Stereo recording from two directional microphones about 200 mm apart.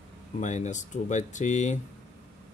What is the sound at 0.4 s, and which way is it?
Speech, 35° left (ahead or behind).